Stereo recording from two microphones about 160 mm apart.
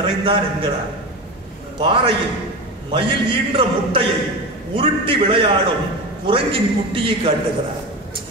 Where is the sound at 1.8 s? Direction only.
35° right (ahead or behind).